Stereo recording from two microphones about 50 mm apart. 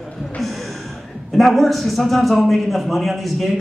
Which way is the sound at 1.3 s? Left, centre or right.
Centre.